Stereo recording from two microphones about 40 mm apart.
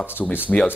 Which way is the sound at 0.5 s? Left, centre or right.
Left.